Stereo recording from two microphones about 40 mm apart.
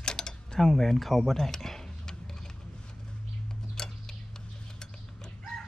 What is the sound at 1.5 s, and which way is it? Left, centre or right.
Tick-tock, centre.